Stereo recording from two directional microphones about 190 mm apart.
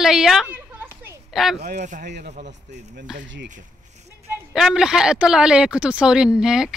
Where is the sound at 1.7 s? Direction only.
40° right (ahead or behind).